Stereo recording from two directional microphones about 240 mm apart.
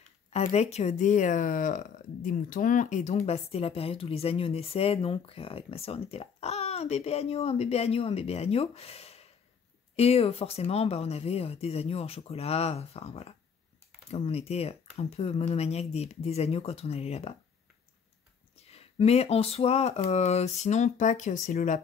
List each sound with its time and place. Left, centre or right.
0.3 s speech: left
18.6 s speech: left